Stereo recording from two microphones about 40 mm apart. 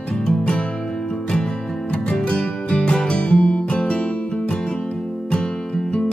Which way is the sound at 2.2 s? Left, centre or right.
Left.